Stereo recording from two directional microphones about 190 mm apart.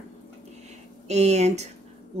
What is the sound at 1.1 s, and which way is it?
Speech, 35° right (ahead or behind).